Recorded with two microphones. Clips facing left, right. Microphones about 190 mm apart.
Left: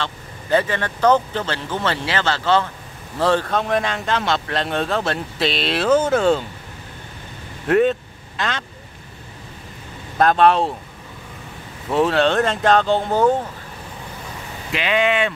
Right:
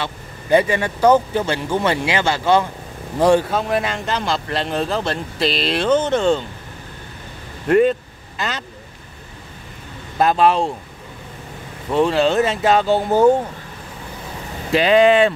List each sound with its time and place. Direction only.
0.0 s speech: 15° right (ahead or behind); by 6.4 s 5° left (ahead or behind)
7.6 s speech: centre (ahead or behind)
10.1 s speech: 5° right (ahead or behind)
11.9 s speech: centre (ahead or behind)
14.7 s speech: 35° right (ahead or behind)